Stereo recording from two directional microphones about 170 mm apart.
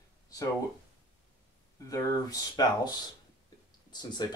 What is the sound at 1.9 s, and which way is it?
Speech, 20° left (ahead or behind).